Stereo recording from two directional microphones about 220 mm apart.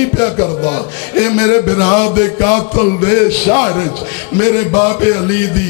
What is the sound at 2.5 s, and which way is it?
A man's voice, 15° left (ahead or behind).